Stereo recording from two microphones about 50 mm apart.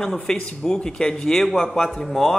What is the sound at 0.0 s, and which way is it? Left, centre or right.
A man's voice, centre.